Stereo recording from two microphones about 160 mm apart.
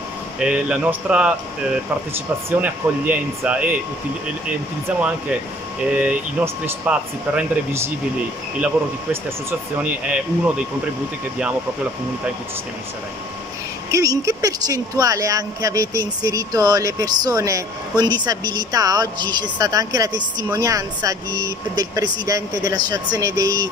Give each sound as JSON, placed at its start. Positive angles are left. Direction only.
{"t": 0.4, "sound": "speech", "side_deg": -5}
{"t": 5.9, "sound": "speech", "side_deg": -10}
{"t": 9.1, "sound": "speech", "side_deg": -10}
{"t": 13.9, "sound": "speech", "side_deg": -20}